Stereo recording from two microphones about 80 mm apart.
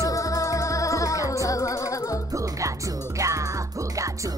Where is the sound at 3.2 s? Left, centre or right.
Right.